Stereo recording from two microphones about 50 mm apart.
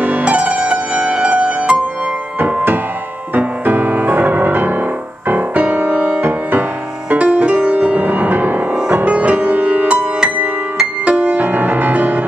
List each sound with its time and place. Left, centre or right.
0.2 s music: right
2.4 s music: right
8.7 s music: right
11.1 s music: right